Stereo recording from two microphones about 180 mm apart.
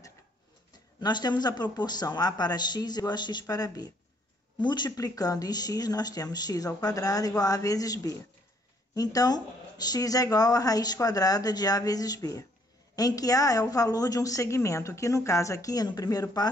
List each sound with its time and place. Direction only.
1.0 s speech: 25° left (ahead or behind)